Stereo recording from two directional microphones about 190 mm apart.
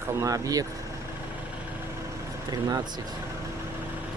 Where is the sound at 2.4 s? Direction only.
20° right (ahead or behind).